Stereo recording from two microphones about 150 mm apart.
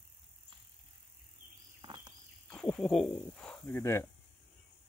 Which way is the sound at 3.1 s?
5° left (ahead or behind).